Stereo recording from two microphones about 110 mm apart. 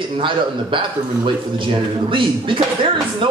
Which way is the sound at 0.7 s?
50° right (ahead or behind).